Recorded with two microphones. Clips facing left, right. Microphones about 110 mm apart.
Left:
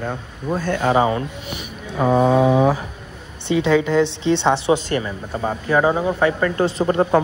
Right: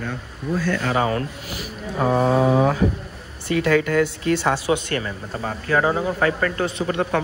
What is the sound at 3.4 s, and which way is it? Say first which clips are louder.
Speech: left 2 dB; 20° left (ahead or behind).